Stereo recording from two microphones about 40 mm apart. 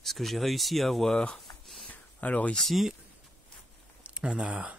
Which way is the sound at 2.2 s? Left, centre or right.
Left.